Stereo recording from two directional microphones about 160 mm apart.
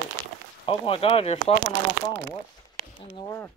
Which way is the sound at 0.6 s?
35° left (ahead or behind).